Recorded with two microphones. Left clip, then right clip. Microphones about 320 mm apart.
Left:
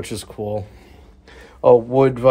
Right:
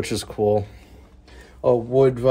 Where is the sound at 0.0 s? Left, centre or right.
Centre.